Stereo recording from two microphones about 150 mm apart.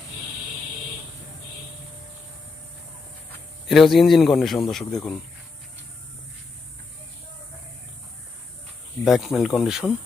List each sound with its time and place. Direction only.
3.6 s speech: centre (ahead or behind)
9.0 s speech: centre (ahead or behind)